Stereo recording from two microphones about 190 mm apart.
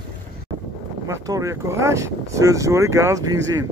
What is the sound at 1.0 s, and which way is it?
Speech, 20° right (ahead or behind).